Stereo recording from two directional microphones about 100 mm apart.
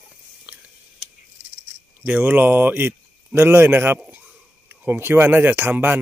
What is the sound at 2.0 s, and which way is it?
Speech, 20° right (ahead or behind).